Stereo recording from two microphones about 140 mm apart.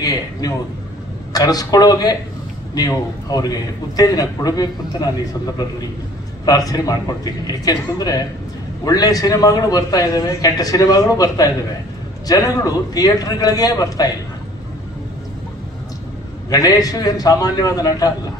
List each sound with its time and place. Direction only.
0.0 s a man's voice: 25° left (ahead or behind)
6.4 s a man's voice: 25° left (ahead or behind)
16.4 s a man's voice: 25° left (ahead or behind)